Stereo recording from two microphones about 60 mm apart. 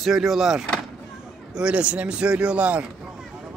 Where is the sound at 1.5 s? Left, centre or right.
Centre.